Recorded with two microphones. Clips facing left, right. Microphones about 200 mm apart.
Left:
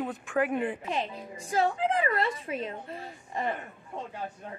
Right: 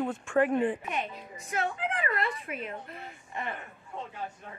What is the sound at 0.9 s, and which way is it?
A woman's voice, 30° left (ahead or behind).